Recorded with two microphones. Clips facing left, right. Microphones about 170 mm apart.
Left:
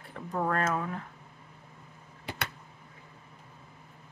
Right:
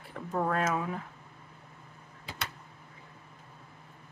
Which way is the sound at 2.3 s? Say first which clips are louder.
Left 4 dB; 60° left (ahead or behind).